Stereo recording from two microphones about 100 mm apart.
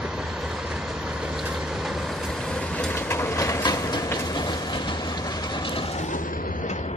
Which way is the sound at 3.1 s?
25° left (ahead or behind).